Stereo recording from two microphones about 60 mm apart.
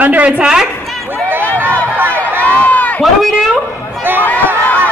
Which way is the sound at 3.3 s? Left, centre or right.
Centre.